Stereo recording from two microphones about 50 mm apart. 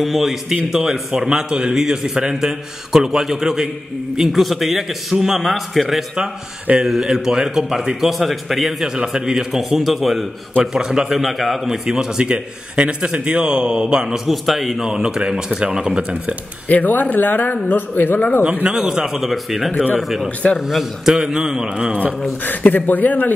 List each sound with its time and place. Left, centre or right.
0.0 s a man's voice: centre
1.5 s a man's voice: centre
14.9 s a man's voice: centre
16.0 s speech: right
16.6 s a man's voice: left
18.8 s a man's voice: centre
22.4 s a man's voice: left